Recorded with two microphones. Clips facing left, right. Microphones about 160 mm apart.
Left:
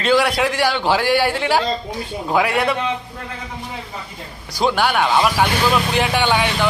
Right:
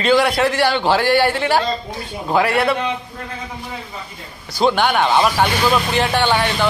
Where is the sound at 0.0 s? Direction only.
10° left (ahead or behind).